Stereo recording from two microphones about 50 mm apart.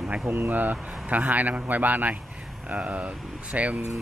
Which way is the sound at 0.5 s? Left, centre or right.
Right.